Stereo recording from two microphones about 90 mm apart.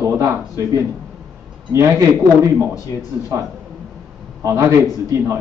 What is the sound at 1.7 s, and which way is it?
Speech, 35° right (ahead or behind).